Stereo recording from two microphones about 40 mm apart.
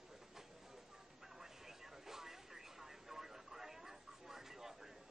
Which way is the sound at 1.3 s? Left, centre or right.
Centre.